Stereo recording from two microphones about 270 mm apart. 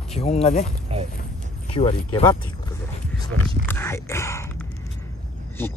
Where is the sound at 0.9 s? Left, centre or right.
Right.